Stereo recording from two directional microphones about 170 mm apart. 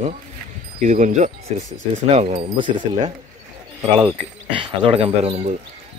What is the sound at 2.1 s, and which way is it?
Speech, 30° right (ahead or behind).